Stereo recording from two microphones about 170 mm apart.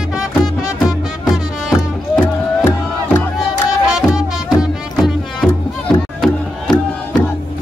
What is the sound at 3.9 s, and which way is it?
Music, 5° right (ahead or behind).